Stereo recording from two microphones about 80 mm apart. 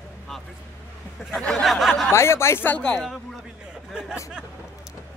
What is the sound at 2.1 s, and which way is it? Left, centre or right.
Speech, left.